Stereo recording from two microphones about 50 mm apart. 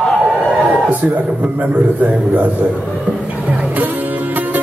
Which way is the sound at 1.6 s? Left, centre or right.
Right.